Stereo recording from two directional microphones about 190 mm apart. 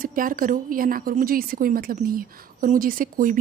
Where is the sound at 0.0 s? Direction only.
45° right (ahead or behind).